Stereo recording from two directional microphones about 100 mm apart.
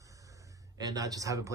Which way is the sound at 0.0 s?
35° right (ahead or behind).